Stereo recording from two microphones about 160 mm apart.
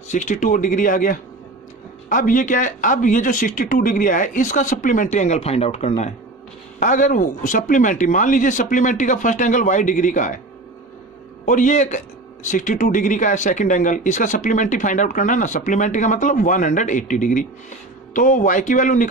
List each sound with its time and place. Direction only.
0.1 s speech: 50° left (ahead or behind)
11.4 s speech: 50° left (ahead or behind)